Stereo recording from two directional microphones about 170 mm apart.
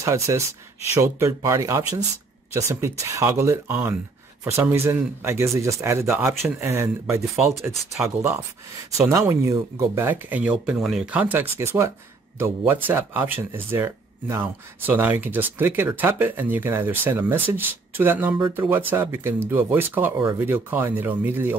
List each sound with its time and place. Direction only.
0.0 s speech: 20° right (ahead or behind)